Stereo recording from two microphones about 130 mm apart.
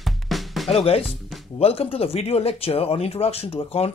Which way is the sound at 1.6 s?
50° left (ahead or behind).